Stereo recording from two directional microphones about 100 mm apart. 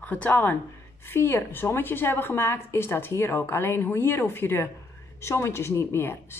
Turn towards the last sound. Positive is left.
turn(degrees=25)  # may be behind; listen again after turning